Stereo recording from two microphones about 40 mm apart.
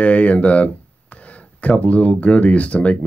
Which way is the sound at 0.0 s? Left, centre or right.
Left.